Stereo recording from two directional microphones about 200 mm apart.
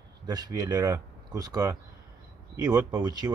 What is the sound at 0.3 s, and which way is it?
Speech, 20° right (ahead or behind).